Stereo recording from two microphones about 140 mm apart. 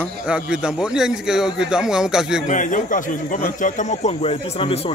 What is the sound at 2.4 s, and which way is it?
A man's voice, 65° left (ahead or behind).